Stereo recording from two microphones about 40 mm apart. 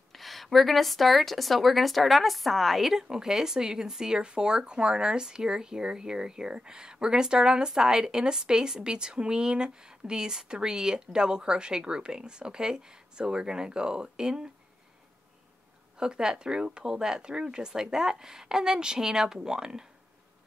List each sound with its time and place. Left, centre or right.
0.1 s a woman's voice: centre
16.0 s speech: centre